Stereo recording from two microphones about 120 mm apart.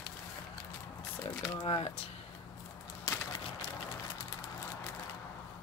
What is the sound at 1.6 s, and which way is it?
Speech, 55° left (ahead or behind).